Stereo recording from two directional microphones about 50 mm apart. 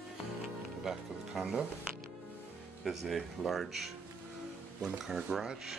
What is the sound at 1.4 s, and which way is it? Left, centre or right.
Speech, centre.